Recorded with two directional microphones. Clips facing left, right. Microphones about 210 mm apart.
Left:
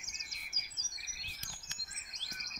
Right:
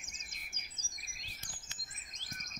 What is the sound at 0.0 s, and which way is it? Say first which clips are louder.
Chirp: right 1 dB; 50° right (ahead or behind).